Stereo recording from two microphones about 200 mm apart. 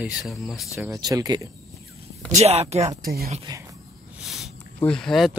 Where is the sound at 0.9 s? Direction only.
15° right (ahead or behind).